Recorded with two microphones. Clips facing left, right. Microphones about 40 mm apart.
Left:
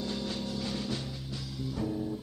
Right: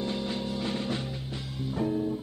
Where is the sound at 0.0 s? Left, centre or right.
Right.